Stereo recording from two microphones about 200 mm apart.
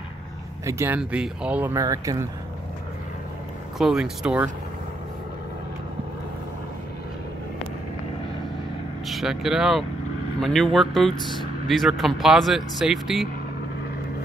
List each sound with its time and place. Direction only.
0.7 s speech: 10° right (ahead or behind)
3.7 s speech: centre (ahead or behind)
9.0 s speech: centre (ahead or behind)